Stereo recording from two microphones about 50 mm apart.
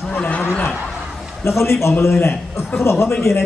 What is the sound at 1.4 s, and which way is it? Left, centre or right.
Speech, left.